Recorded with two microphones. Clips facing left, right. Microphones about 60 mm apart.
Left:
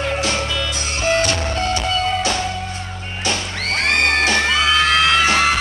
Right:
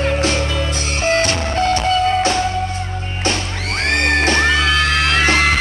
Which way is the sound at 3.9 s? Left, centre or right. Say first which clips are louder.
Right 2 dB; right.